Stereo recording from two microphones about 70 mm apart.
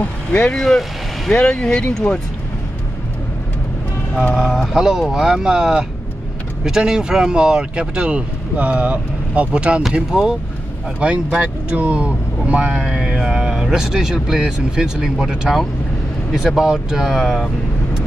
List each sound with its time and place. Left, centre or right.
0.0 s speech: centre
0.6 s speech: centre
4.4 s speech: centre